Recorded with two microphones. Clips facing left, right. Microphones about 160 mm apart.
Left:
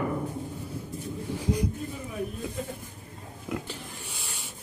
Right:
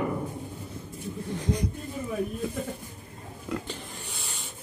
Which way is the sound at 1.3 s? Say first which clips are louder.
Left 1 dB; 5° left (ahead or behind).